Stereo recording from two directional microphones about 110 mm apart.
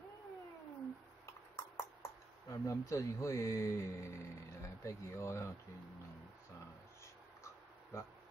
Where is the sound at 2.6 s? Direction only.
30° left (ahead or behind).